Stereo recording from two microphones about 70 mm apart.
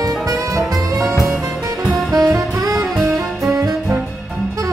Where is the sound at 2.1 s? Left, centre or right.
Right.